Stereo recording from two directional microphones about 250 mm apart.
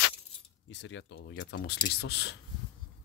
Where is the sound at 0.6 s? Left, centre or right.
Left.